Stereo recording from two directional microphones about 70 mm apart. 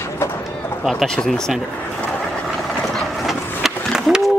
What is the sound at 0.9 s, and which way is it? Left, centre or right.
Speech, centre.